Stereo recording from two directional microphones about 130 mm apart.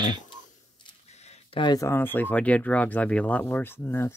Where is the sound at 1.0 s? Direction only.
60° left (ahead or behind).